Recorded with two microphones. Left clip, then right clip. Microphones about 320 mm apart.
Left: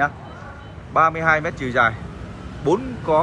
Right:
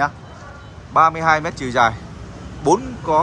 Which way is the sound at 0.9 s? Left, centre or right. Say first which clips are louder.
Right 2 dB; centre.